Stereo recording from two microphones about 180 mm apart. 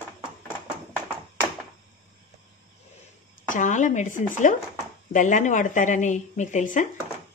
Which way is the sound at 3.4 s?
45° left (ahead or behind).